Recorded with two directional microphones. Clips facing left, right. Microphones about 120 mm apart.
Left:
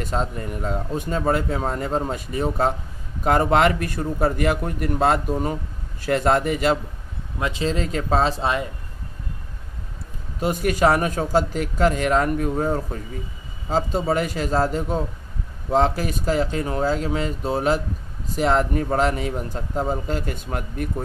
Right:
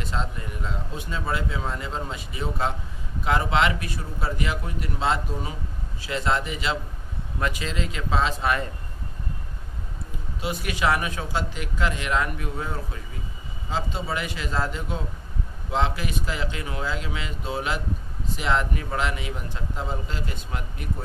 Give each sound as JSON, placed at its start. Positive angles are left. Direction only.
{"t": 0.0, "sound": "a man's voice", "side_deg": 45}
{"t": 7.3, "sound": "speech", "side_deg": 20}
{"t": 7.6, "sound": "speech", "side_deg": 40}
{"t": 10.4, "sound": "a man's voice", "side_deg": 45}